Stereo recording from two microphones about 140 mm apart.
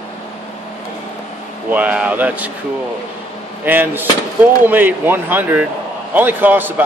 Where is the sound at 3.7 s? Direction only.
15° right (ahead or behind).